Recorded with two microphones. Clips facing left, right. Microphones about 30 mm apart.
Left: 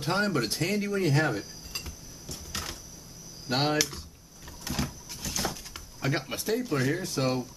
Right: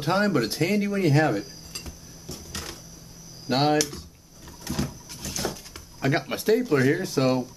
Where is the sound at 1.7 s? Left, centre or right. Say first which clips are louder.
Left 1 dB; centre.